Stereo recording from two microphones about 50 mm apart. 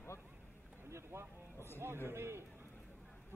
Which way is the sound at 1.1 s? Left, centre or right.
Right.